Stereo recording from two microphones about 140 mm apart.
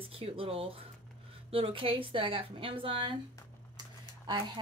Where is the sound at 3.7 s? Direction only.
30° right (ahead or behind).